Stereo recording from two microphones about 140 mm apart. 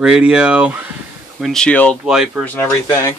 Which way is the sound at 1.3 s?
5° left (ahead or behind).